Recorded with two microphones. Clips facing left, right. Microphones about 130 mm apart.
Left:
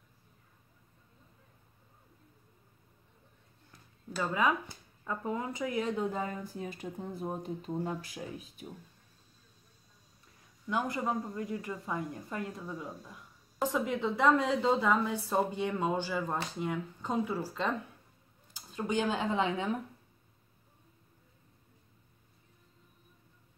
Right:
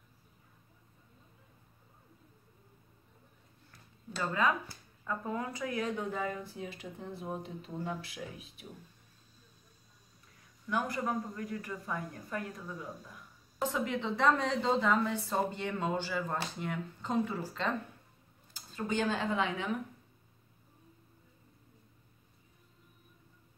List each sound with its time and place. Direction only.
4.1 s a woman's voice: 10° left (ahead or behind)
6.2 s speech: 40° left (ahead or behind)
10.7 s a woman's voice: 20° left (ahead or behind)
13.6 s a woman's voice: 10° left (ahead or behind)
18.5 s a sound: 15° left (ahead or behind)
19.3 s a woman's voice: 25° left (ahead or behind)